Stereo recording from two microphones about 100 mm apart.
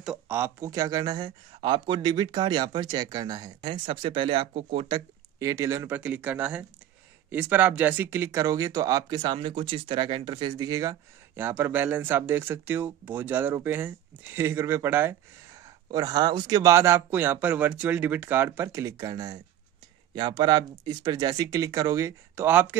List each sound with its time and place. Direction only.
0.6 s speech: 35° right (ahead or behind)
3.6 s speech: 60° right (ahead or behind)
5.4 s speech: 30° right (ahead or behind)
5.9 s speech: 15° right (ahead or behind); by 11.0 s 40° right (ahead or behind)
11.3 s speech: 20° right (ahead or behind)
15.5 s speech: 40° right (ahead or behind)
20.2 s speech: 50° right (ahead or behind)
22.3 s speech: 20° right (ahead or behind)